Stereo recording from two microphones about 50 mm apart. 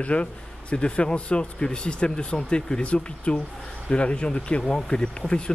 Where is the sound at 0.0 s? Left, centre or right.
Left.